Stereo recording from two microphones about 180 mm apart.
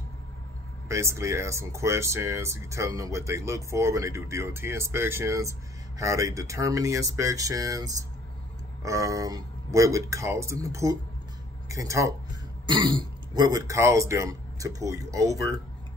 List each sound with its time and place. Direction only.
0.8 s speech: 15° right (ahead or behind)